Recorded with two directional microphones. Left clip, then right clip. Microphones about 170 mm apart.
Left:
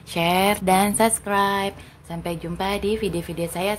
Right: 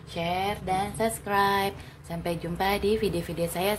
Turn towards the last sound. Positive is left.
turn(degrees=15)  # may be behind; listen again after turning